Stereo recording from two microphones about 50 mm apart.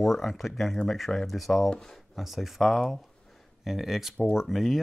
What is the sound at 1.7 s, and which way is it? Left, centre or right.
Speech, centre.